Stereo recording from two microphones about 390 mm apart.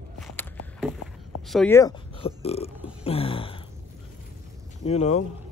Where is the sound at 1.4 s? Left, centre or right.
Centre.